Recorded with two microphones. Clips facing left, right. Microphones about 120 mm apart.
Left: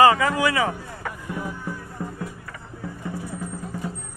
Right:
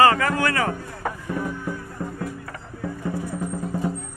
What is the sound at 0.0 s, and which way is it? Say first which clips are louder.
Speech: left 1 dB; 10° left (ahead or behind).